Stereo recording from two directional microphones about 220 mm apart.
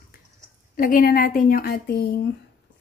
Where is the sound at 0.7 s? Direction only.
40° left (ahead or behind).